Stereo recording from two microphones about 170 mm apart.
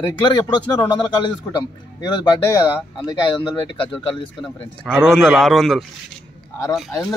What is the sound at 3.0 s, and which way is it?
Speech, 25° left (ahead or behind).